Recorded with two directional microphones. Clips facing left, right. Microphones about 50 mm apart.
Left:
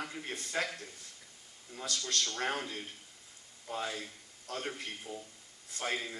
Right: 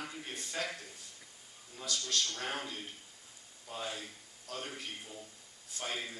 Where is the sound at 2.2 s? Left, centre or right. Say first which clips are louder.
Left 3 dB; left.